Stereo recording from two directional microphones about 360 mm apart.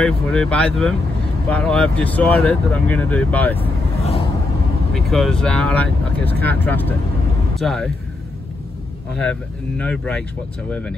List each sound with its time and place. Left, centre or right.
0.0 s speech: centre
3.5 s vehicle: centre
4.9 s speech: centre
9.3 s speech: centre